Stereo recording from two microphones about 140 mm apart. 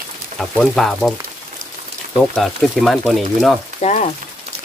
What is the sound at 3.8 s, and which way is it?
Speech, 55° left (ahead or behind).